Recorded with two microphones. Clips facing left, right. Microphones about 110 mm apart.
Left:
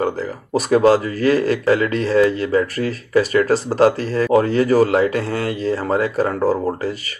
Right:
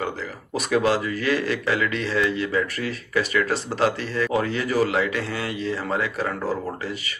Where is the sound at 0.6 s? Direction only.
40° left (ahead or behind).